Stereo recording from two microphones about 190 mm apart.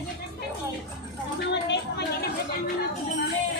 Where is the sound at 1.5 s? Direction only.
65° left (ahead or behind).